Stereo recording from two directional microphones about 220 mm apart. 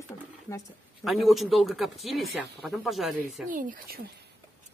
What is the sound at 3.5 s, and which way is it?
Speech, 40° right (ahead or behind).